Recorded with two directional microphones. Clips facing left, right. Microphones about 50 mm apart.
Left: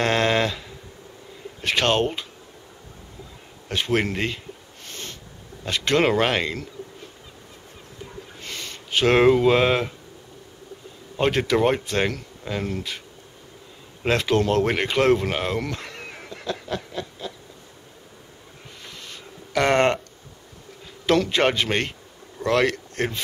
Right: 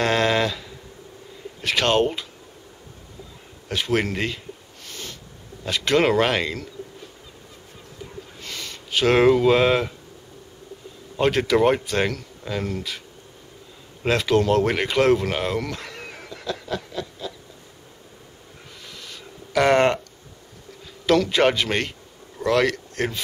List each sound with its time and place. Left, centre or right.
0.0 s a sound: centre
1.6 s speech: centre
1.9 s speech: centre
3.9 s speech: centre
5.9 s speech: centre
8.4 s a sound: left
8.9 s speech: centre
11.1 s speech: centre
12.1 s speech: centre
14.0 s speech: centre
16.3 s a sound: centre
19.5 s speech: centre
21.0 s a man's voice: centre